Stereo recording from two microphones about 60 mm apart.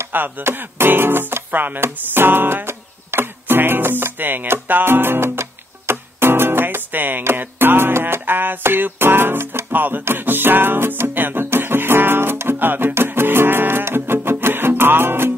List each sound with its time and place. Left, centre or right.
0.4 s music: right